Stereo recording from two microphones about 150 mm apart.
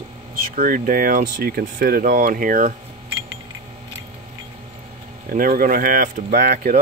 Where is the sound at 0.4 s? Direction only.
65° right (ahead or behind).